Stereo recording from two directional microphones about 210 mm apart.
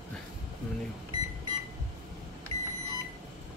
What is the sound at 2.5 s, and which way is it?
Microwave oven, 30° right (ahead or behind).